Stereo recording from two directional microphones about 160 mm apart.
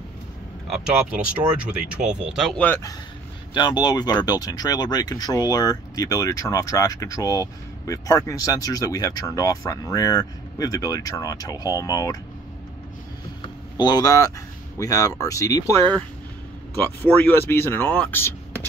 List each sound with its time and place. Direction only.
0.7 s speech: 5° right (ahead or behind)
2.6 s speech: 15° left (ahead or behind)
3.5 s speech: 25° left (ahead or behind)
13.4 s a sound: 25° left (ahead or behind)
14.8 s speech: 20° left (ahead or behind)
16.7 s speech: 10° left (ahead or behind)